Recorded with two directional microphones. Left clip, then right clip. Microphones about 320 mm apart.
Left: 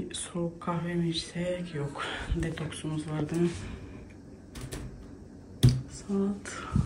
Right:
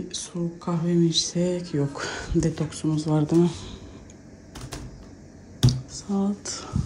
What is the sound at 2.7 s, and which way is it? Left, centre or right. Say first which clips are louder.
Speech: right 9 dB; centre.